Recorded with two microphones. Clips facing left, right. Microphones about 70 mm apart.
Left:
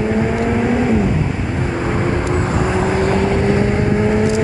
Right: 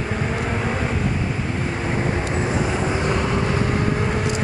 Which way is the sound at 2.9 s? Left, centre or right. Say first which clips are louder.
Left 6 dB; left.